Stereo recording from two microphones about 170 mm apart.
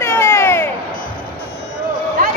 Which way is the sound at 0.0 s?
15° left (ahead or behind).